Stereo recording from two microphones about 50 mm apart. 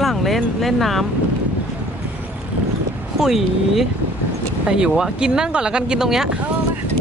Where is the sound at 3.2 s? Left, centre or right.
Centre.